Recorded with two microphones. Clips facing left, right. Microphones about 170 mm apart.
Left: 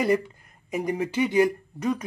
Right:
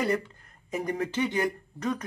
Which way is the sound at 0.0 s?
10° left (ahead or behind).